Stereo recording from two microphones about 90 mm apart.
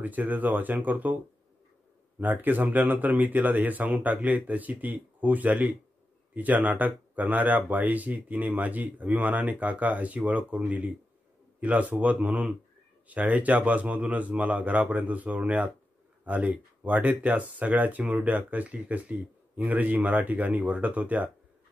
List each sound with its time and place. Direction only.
0.0 s speech: 20° right (ahead or behind)